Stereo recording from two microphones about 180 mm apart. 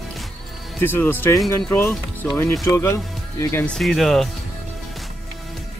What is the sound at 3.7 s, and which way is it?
Speech, centre (ahead or behind).